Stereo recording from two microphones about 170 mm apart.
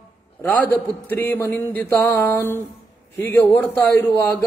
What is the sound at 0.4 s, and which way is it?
A man's voice, 10° left (ahead or behind).